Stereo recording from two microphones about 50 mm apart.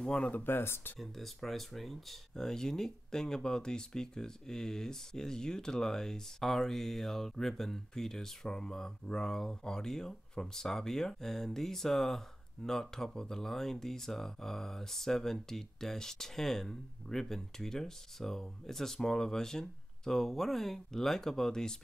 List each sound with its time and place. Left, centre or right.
0.0 s speech: centre
0.4 s speech: left
0.9 s speech: centre